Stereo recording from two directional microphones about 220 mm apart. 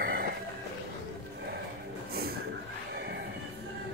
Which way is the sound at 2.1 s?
45° right (ahead or behind).